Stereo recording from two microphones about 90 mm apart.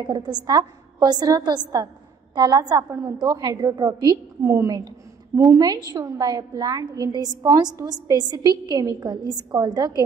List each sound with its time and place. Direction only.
0.0 s a woman's voice: 55° right (ahead or behind)
2.9 s a woman's voice: 30° right (ahead or behind)
3.2 s a woman's voice: 45° right (ahead or behind)
4.5 s a woman's voice: 35° right (ahead or behind)
4.7 s a sound: 40° right (ahead or behind)
5.5 s a woman's voice: 45° right (ahead or behind)